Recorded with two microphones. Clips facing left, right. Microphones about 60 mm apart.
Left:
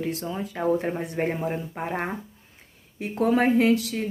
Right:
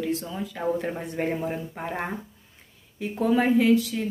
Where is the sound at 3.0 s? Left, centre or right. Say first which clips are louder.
Left 1 dB; left.